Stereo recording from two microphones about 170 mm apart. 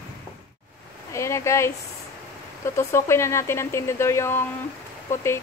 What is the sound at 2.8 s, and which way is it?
Speech, 15° left (ahead or behind).